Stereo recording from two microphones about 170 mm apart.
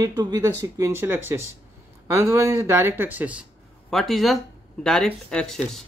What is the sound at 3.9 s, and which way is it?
Speech, centre (ahead or behind).